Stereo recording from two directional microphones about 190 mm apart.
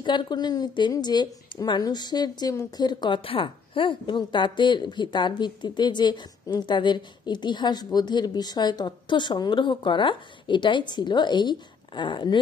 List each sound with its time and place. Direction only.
0.0 s a woman's voice: 25° left (ahead or behind)